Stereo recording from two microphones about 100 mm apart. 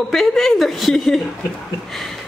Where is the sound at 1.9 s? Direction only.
5° left (ahead or behind).